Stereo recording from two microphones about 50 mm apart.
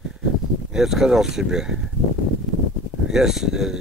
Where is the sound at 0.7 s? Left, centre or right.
Centre.